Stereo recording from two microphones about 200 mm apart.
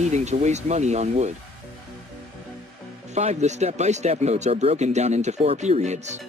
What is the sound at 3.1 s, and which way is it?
Speech, 35° right (ahead or behind).